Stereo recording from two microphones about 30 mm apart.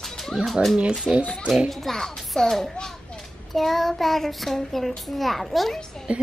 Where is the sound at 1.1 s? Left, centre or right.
Right.